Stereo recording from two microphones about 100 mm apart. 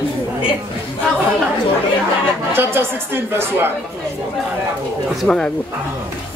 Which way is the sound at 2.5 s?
25° right (ahead or behind).